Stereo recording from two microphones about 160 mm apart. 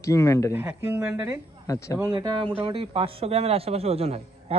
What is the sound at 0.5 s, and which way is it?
Speech, 15° right (ahead or behind).